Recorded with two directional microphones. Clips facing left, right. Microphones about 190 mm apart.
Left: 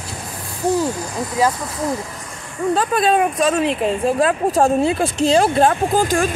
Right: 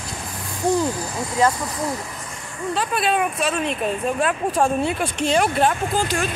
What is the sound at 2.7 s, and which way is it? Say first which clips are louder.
Speech: left 5 dB; 45° left (ahead or behind).